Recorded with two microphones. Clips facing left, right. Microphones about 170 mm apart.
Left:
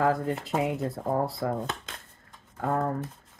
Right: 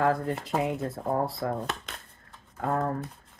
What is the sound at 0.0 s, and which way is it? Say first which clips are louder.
Speech: even; 5° left (ahead or behind).